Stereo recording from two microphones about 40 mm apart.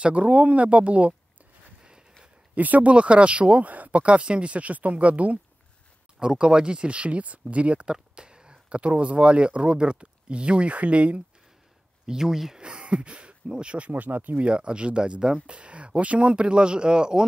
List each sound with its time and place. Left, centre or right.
0.0 s speech: right
2.5 s speech: right
6.3 s speech: right
7.8 s speech: right
12.1 s speech: centre
12.5 s speech: right
13.9 s speech: right
14.4 s speech: right